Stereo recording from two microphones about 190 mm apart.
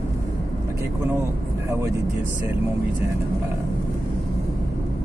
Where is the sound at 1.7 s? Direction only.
15° right (ahead or behind).